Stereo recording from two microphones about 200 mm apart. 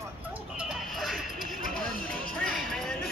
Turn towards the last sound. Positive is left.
turn(degrees=0)  # may be behind; listen again after turning